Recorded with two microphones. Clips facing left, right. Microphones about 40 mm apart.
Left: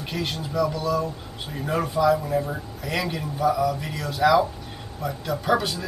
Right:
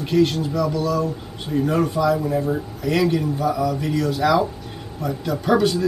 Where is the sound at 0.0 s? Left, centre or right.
Centre.